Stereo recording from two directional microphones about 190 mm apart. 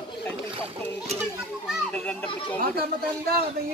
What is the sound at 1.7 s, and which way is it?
Children playing, 5° left (ahead or behind).